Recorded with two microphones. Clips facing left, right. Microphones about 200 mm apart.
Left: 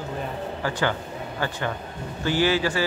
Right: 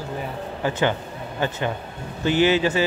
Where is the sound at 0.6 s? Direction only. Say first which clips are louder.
Right 4 dB; 20° right (ahead or behind).